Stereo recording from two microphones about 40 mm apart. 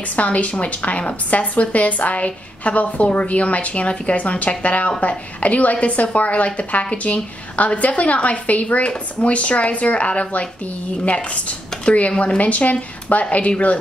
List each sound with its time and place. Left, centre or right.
0.1 s a woman's voice: left